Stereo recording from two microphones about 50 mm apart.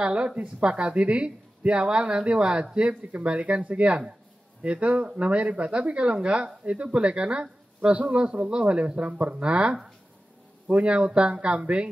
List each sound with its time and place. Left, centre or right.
0.0 s speech: right